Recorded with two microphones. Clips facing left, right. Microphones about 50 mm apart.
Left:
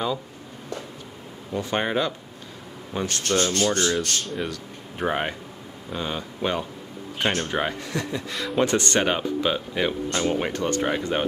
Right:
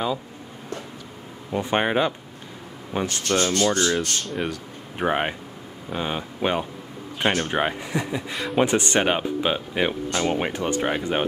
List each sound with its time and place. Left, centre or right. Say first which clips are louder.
1.5 s speech: right 3 dB; right
3.9 s speech: right 1 dB; centre
4.4 s speech: right 2 dB; centre